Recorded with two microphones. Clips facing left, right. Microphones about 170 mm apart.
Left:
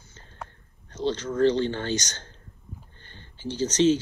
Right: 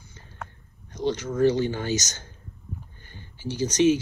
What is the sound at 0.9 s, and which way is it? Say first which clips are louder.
Speech: even; 10° right (ahead or behind).